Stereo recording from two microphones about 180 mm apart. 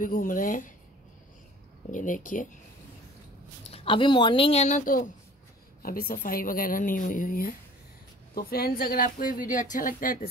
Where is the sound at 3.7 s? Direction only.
30° left (ahead or behind); by 10.2 s 50° left (ahead or behind).